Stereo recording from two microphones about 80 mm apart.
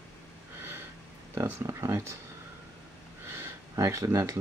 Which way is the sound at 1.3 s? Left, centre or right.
Right.